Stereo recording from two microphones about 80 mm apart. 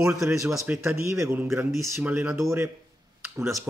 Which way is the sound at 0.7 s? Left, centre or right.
Right.